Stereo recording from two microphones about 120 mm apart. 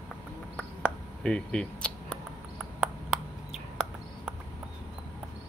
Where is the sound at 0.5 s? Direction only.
10° left (ahead or behind).